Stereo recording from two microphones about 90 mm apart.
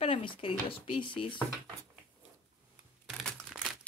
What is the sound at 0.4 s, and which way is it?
Speech, 80° left.